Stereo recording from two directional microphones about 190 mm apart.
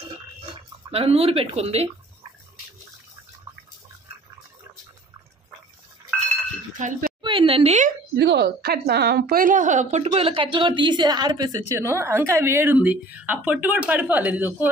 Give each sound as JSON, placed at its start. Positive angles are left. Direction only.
{"t": 0.9, "sound": "speech", "side_deg": -30}
{"t": 6.8, "sound": "speech", "side_deg": -45}
{"t": 7.2, "sound": "a sound", "side_deg": -25}
{"t": 8.2, "sound": "a woman's voice", "side_deg": -60}